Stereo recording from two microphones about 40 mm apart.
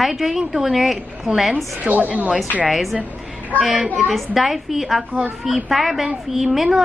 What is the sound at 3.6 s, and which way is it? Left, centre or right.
Speech, right.